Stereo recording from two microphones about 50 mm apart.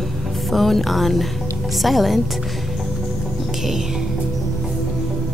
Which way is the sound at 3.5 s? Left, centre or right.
Centre.